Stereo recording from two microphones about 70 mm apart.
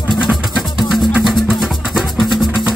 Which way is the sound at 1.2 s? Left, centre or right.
Centre.